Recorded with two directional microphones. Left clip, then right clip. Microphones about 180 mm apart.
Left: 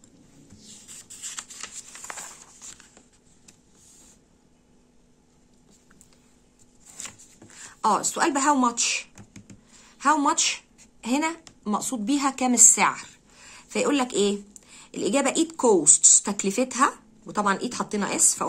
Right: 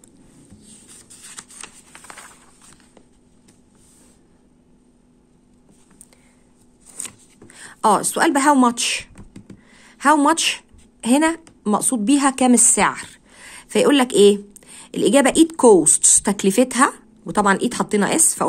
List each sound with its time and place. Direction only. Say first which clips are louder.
7.6 s speech: right 6 dB; 50° right (ahead or behind)
9.7 s a sound: right 6 dB; 50° right (ahead or behind)
11.6 s speech: right 8 dB; 45° right (ahead or behind)